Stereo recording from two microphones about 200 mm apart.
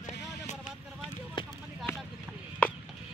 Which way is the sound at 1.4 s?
25° left (ahead or behind).